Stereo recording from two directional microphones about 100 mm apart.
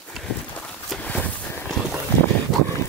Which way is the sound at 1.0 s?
15° left (ahead or behind).